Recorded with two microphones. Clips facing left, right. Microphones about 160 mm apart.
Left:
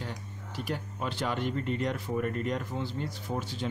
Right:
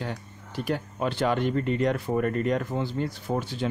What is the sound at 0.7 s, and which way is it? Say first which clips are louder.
Speech: right 7 dB; 70° right (ahead or behind).